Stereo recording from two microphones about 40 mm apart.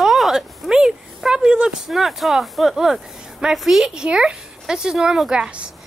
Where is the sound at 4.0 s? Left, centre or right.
Right.